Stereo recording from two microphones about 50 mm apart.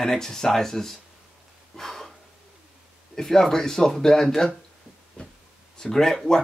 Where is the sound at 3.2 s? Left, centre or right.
Centre.